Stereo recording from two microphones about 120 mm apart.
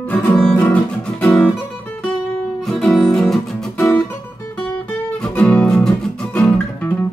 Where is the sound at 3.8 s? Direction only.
30° left (ahead or behind).